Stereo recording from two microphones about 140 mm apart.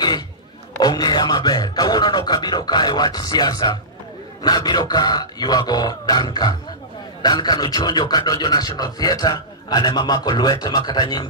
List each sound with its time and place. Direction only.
0.7 s speech: 30° left (ahead or behind)